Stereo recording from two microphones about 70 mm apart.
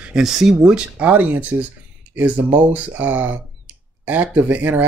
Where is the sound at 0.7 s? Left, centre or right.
Centre.